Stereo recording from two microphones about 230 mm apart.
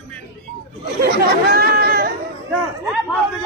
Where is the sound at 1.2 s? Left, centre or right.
Right.